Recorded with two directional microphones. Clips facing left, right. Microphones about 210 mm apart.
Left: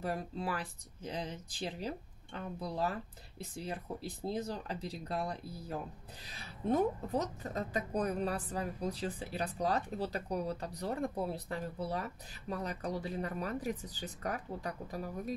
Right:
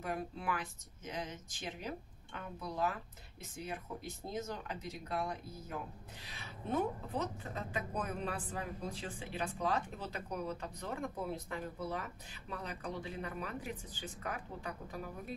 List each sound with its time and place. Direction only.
0.0 s a woman's voice: 35° left (ahead or behind)